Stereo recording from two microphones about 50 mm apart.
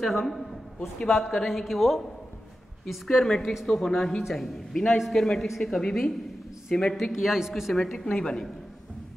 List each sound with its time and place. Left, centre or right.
0.0 s a woman's voice: centre
1.3 s a woman's voice: centre
7.1 s speech: centre
7.7 s a woman's voice: centre